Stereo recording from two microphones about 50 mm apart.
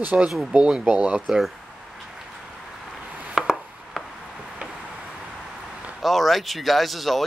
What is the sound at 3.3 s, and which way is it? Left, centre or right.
Chopping, centre.